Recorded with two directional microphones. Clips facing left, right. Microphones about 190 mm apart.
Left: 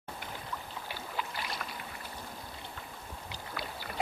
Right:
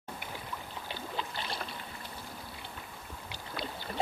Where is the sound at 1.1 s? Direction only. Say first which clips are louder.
Even; 30° right (ahead or behind).